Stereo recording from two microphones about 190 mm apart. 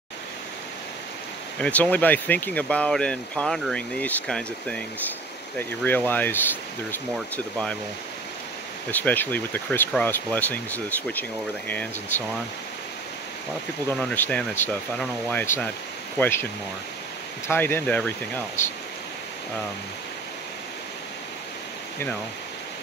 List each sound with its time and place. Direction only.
1.6 s speech: 10° left (ahead or behind)
8.9 s speech: 10° left (ahead or behind)
13.8 s speech: 5° left (ahead or behind)
17.5 s speech: 10° left (ahead or behind)